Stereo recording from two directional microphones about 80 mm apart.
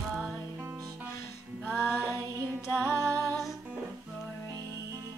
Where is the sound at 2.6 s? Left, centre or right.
Left.